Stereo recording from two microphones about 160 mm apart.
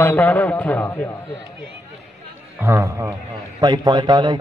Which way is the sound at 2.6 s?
15° right (ahead or behind).